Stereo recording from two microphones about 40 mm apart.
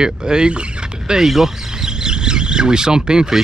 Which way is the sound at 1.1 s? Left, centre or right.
Centre.